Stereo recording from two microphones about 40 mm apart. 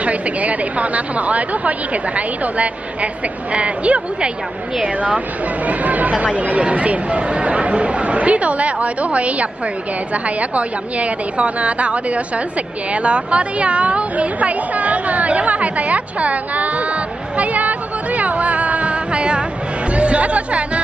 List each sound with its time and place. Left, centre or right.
0.0 s a woman's voice: right